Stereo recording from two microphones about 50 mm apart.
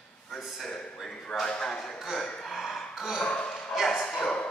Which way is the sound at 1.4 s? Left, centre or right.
Centre.